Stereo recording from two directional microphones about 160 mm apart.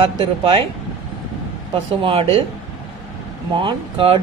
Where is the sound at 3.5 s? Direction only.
30° right (ahead or behind).